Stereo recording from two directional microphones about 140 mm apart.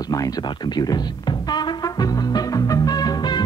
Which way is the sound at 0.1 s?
30° left (ahead or behind).